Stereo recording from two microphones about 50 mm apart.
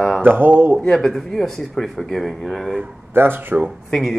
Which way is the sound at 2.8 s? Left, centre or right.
Right.